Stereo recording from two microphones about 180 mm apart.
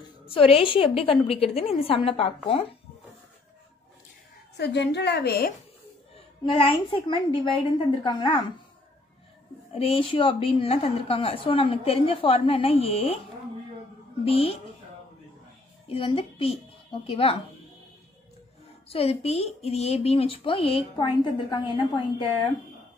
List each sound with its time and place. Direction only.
0.3 s a woman's voice: 30° left (ahead or behind)
4.6 s a woman's voice: 70° left (ahead or behind)
6.4 s a woman's voice: 30° left (ahead or behind)
9.7 s a woman's voice: 35° left (ahead or behind)
14.2 s a woman's voice: 35° left (ahead or behind)
15.9 s a woman's voice: 30° left (ahead or behind)
18.9 s a woman's voice: 35° left (ahead or behind)